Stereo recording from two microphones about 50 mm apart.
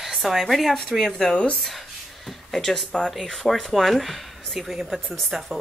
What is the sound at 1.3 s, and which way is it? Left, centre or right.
Speech, left.